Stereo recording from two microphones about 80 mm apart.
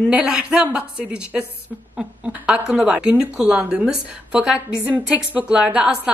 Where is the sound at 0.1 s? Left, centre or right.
Centre.